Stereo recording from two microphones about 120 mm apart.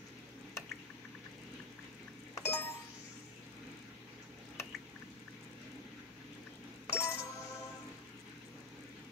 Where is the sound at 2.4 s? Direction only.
20° left (ahead or behind).